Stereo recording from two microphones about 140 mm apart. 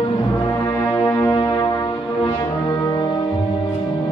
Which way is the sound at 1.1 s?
30° left (ahead or behind).